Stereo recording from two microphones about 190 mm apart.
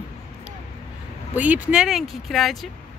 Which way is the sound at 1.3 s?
10° right (ahead or behind).